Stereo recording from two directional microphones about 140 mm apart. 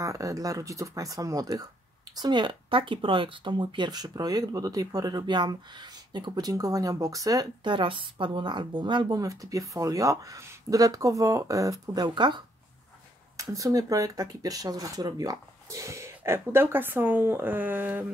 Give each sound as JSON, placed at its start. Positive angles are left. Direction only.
{"t": 0.0, "sound": "speech", "side_deg": -25}